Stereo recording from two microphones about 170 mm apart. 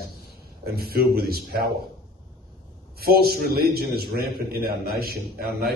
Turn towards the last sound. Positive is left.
turn(degrees=-65)  # may be behind; listen again after turning